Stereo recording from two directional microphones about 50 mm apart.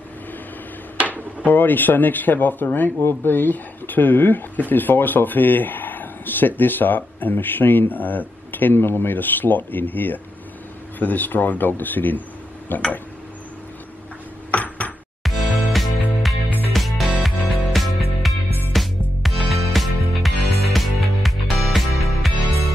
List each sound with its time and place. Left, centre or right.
1.0 s speech: left
14.5 s a sound: left
15.2 s music: centre